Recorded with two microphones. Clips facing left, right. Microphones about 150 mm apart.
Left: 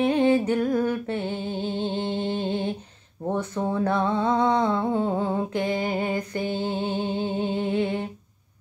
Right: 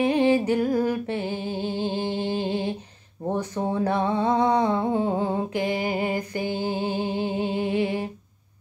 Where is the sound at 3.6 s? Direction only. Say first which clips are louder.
Even; 25° right (ahead or behind).